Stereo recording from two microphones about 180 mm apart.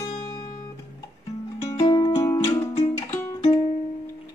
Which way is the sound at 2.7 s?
35° left (ahead or behind).